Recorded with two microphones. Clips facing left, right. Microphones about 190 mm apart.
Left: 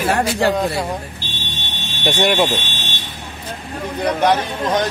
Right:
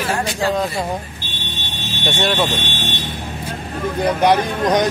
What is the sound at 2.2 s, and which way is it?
Speech, 20° left (ahead or behind).